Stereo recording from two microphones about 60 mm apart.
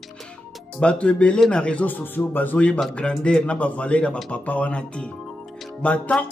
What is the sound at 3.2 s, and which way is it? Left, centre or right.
Speech, centre.